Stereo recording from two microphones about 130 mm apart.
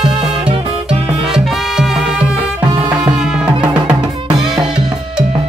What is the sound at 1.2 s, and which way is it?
Music, centre (ahead or behind).